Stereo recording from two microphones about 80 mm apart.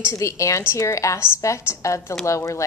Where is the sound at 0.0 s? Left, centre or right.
Left.